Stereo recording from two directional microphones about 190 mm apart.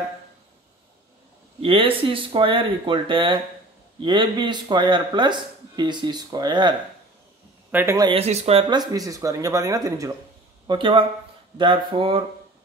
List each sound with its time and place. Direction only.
1.6 s speech: 30° right (ahead or behind)
7.7 s speech: 15° right (ahead or behind)
8.1 s speech: 30° right (ahead or behind)